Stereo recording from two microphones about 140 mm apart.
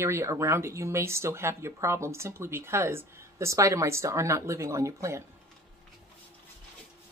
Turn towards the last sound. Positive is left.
turn(degrees=-20)  # may be behind; listen again after turning